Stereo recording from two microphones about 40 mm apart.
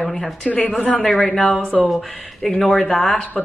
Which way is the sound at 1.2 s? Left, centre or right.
Centre.